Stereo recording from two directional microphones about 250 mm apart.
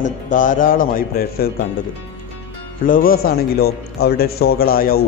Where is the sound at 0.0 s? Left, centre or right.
Left.